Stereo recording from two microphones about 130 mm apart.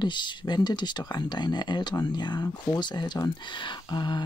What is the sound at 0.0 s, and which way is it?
Speech, 35° left (ahead or behind).